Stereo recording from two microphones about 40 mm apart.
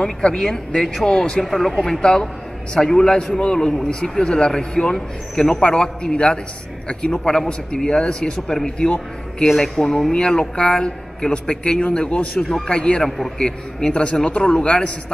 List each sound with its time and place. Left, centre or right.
0.0 s a man's voice: left
1.4 s speech: centre
2.0 s a man's voice: left
8.5 s speech: centre
8.7 s a man's voice: left